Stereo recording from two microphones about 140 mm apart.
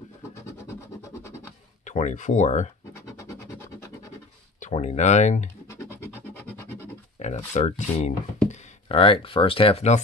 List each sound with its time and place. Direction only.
1.9 s speech: 55° left (ahead or behind)
2.9 s scratch: 20° left (ahead or behind)
4.6 s speech: 55° left (ahead or behind)
7.2 s speech: 55° left (ahead or behind)
8.8 s speech: 40° left (ahead or behind)